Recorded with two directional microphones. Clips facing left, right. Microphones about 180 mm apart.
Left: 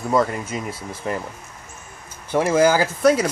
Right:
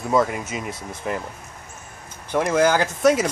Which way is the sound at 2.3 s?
5° left (ahead or behind).